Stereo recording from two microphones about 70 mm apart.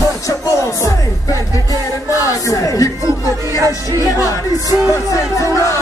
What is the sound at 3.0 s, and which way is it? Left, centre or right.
Music, right.